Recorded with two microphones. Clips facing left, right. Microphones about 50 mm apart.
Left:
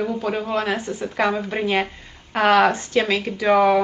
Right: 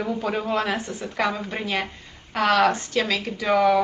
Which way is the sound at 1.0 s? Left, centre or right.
Centre.